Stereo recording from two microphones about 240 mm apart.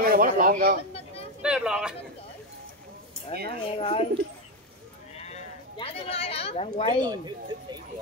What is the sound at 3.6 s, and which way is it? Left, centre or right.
Speech, left.